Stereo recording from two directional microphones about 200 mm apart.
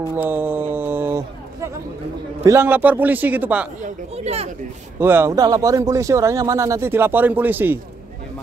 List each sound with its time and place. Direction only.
0.1 s a sound: 10° right (ahead or behind)
2.4 s speech: 15° right (ahead or behind)
3.8 s speech: 30° right (ahead or behind)
5.0 s speech: 10° right (ahead or behind)